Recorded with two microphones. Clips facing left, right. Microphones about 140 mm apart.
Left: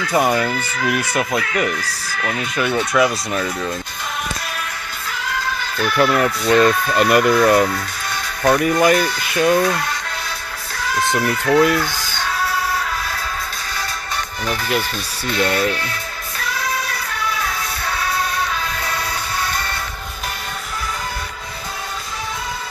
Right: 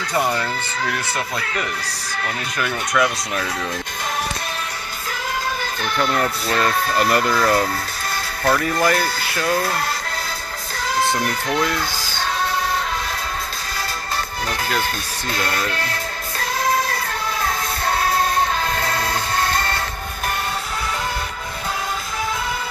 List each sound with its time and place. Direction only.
0.1 s speech: 10° left (ahead or behind)
2.9 s speech: 5° left (ahead or behind)
5.9 s speech: 5° left (ahead or behind)
6.5 s speech: 20° left (ahead or behind)
10.9 s music: 25° right (ahead or behind)
11.5 s speech: 30° left (ahead or behind)
14.8 s speech: 45° right (ahead or behind)
15.4 s speech: 20° left (ahead or behind)
17.3 s music: 40° right (ahead or behind)